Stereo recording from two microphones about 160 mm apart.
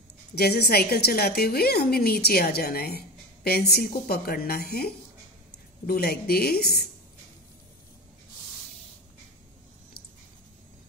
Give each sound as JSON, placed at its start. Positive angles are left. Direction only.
{"t": 0.3, "sound": "a woman's voice", "side_deg": 85}